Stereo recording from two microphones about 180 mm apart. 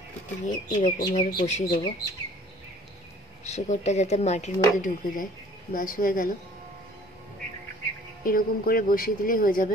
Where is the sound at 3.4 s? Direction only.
40° left (ahead or behind).